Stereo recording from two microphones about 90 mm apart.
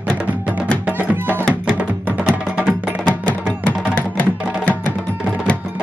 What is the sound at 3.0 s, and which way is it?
Music, 10° left (ahead or behind).